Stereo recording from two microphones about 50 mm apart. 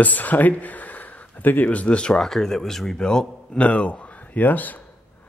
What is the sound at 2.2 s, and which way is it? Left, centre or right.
Speech, centre.